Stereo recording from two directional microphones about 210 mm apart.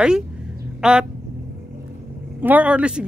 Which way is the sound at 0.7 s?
5° right (ahead or behind).